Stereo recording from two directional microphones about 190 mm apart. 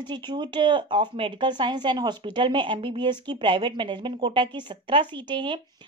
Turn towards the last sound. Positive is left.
turn(degrees=-25)  # may be behind; listen again after turning